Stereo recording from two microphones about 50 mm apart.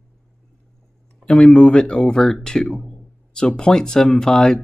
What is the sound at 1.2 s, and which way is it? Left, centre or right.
Speech, centre.